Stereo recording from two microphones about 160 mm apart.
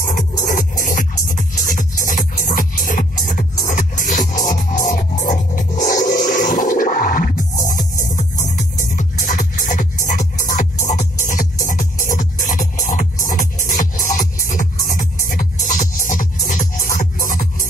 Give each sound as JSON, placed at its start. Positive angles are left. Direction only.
{"t": 0.0, "sound": "music", "side_deg": 55}